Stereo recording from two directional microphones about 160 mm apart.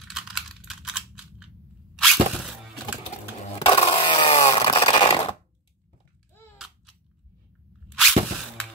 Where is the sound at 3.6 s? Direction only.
30° left (ahead or behind).